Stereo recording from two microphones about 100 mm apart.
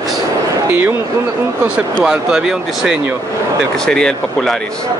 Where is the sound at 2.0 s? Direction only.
5° right (ahead or behind).